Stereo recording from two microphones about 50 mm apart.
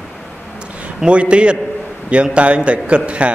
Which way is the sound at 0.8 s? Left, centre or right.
Right.